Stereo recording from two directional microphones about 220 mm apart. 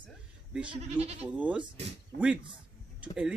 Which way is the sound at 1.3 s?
5° right (ahead or behind).